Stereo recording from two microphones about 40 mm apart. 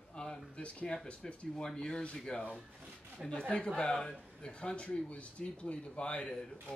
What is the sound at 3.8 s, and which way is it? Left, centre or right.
Speech, centre.